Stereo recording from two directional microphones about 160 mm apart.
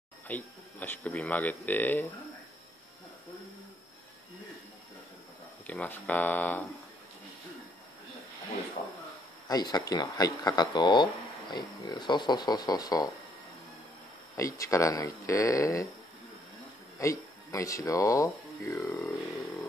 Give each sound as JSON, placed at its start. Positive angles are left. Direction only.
{"t": 0.3, "sound": "speech", "side_deg": 10}
{"t": 5.7, "sound": "speech", "side_deg": 10}
{"t": 9.5, "sound": "speech", "side_deg": 25}
{"t": 14.3, "sound": "speech", "side_deg": 20}
{"t": 17.0, "sound": "speech", "side_deg": 20}